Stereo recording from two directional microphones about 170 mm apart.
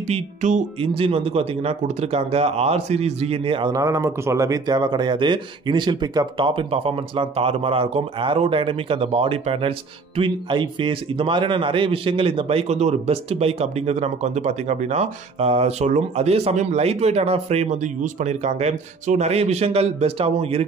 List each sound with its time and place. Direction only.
0.1 s speech: 45° right (ahead or behind)